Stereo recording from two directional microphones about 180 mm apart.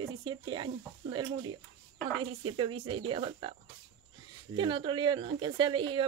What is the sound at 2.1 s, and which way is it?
Speech, 30° right (ahead or behind).